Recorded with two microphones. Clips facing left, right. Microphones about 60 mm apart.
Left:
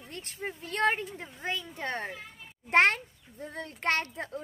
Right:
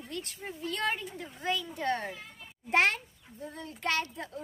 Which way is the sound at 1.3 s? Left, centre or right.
Left.